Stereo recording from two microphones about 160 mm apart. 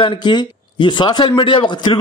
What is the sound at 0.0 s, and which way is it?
A man's voice, 30° left (ahead or behind).